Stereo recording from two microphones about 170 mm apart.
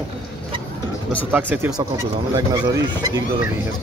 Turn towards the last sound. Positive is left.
turn(degrees=-25)  # may be behind; listen again after turning